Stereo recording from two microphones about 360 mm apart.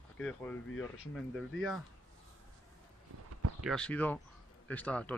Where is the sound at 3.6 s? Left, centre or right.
Centre.